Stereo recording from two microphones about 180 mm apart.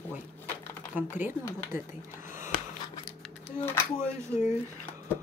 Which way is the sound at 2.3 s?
45° left (ahead or behind).